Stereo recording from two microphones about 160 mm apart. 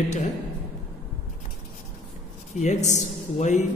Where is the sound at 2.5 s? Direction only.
45° left (ahead or behind).